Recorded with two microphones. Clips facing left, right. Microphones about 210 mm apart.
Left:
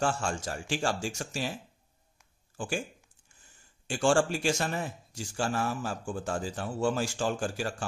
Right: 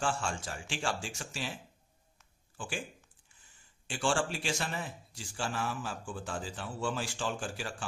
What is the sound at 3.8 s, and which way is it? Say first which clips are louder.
Speech: left 6 dB; 45° left (ahead or behind).